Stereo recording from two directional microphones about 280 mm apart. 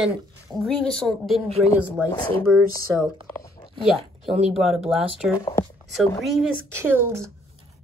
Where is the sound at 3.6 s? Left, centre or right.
Centre.